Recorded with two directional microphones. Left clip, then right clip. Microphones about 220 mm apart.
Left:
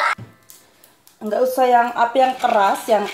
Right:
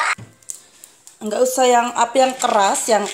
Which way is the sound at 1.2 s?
20° right (ahead or behind).